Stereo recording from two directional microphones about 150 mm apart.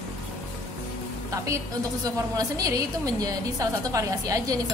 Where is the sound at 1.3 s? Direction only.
20° right (ahead or behind).